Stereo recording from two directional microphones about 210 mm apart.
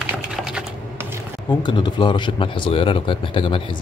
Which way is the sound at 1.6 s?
20° left (ahead or behind).